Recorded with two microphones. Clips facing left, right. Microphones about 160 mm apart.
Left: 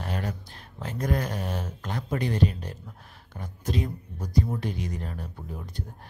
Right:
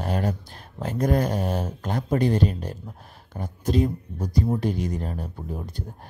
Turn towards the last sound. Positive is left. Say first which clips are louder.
# right 4 dB
turn(degrees=-35)  # may be behind; listen again after turning